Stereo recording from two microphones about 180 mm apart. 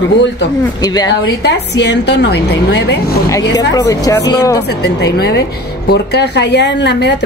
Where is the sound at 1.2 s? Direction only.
75° left (ahead or behind).